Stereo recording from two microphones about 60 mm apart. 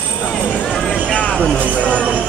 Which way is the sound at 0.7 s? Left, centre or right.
Centre.